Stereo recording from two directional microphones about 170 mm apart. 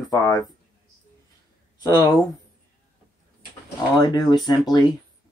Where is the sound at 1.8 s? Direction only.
25° left (ahead or behind).